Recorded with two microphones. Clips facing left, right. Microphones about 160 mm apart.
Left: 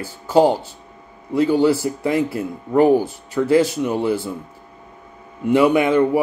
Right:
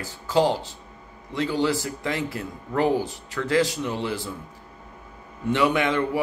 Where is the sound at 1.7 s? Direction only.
10° left (ahead or behind).